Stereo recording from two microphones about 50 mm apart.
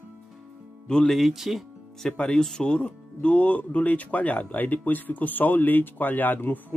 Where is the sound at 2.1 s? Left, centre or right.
Centre.